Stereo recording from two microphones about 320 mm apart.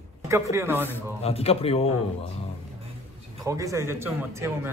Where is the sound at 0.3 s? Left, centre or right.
Centre.